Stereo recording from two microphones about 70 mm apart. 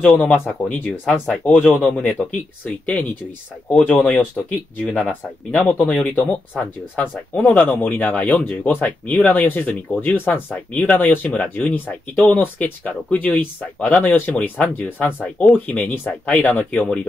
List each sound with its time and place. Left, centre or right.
0.0 s speech: left
4.8 s speech: centre